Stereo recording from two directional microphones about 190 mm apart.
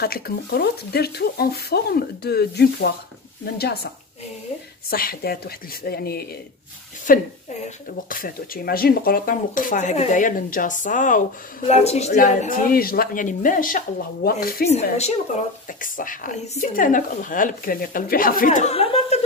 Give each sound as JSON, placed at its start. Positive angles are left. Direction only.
{"t": 0.0, "sound": "speech", "side_deg": 55}
{"t": 14.7, "sound": "speech", "side_deg": 35}
{"t": 15.8, "sound": "speech", "side_deg": 45}